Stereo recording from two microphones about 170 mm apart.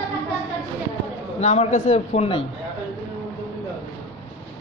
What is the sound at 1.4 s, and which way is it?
A woman's voice, 40° left (ahead or behind).